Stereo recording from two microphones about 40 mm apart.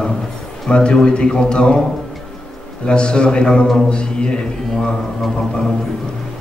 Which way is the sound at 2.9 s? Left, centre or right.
Left.